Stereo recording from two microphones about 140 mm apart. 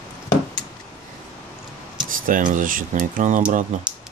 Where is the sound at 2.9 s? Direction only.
65° right (ahead or behind).